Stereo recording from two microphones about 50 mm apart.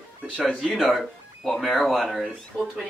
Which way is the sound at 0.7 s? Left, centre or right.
Centre.